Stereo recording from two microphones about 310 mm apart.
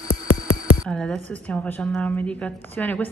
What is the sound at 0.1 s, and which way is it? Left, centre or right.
Music, left.